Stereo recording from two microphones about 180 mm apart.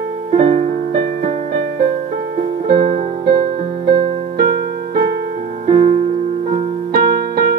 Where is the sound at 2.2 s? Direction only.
55° right (ahead or behind).